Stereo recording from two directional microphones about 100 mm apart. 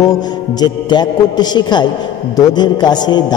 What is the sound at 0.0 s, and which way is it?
A man's voice, 40° left (ahead or behind).